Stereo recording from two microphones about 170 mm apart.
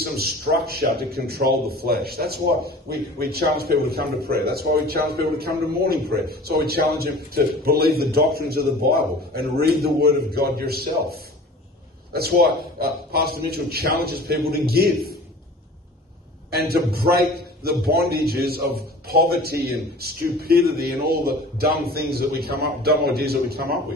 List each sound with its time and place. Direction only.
0.0 s a man's voice: 65° right (ahead or behind)
16.5 s a man's voice: 65° right (ahead or behind)